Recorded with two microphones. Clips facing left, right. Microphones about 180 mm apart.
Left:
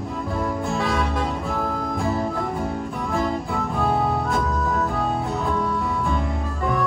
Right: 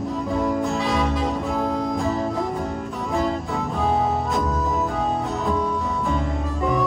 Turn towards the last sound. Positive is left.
turn(degrees=0)  # may be behind; listen again after turning